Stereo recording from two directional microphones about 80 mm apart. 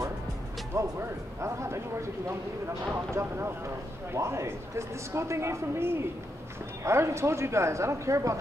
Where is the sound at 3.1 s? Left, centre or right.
Right.